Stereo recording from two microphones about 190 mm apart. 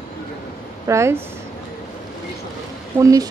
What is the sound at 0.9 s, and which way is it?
Speech, 15° right (ahead or behind).